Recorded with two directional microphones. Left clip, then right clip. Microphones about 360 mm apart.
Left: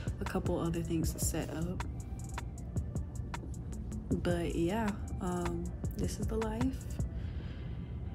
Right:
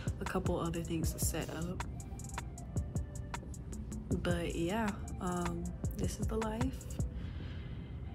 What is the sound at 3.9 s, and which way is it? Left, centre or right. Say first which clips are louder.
Speech: left 2 dB; centre.